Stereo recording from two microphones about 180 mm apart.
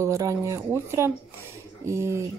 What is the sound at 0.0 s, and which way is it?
Speech, 15° right (ahead or behind).